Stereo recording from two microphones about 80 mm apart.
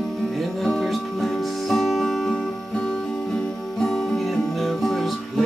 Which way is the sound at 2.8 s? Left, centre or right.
Centre.